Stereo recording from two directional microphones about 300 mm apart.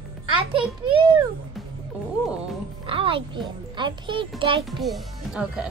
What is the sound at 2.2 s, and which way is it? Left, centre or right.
Music, centre.